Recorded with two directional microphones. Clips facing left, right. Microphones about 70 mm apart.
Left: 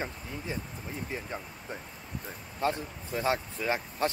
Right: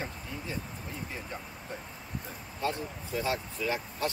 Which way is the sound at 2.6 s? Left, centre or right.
Left.